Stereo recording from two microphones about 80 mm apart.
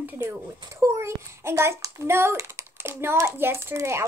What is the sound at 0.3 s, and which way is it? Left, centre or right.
A child's voice, right.